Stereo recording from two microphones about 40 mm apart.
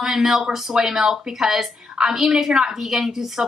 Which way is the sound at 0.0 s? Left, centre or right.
Centre.